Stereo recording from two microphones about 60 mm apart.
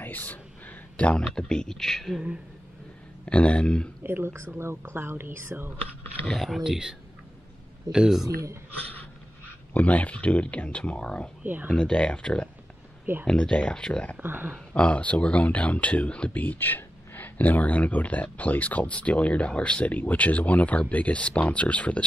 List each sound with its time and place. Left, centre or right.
0.0 s a sound: left
1.2 s speech: centre
3.3 s speech: centre
4.0 s speech: right
6.2 s speech: centre
6.6 s speech: centre
9.8 s speech: left
11.4 s speech: right
11.7 s speech: centre
14.2 s speech: right
14.7 s speech: left